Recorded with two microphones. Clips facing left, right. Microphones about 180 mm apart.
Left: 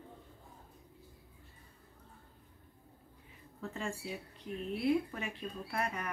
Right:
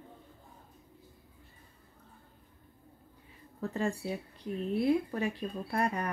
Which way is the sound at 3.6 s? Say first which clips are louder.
Right 7 dB; 40° right (ahead or behind).